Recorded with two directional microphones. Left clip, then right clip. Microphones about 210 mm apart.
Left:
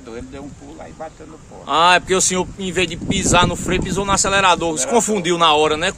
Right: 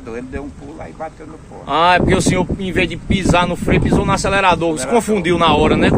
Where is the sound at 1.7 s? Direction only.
10° left (ahead or behind).